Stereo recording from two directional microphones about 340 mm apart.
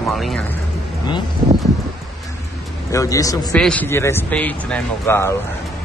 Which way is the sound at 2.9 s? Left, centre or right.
Centre.